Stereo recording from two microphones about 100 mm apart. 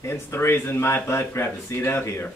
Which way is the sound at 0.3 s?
25° left (ahead or behind).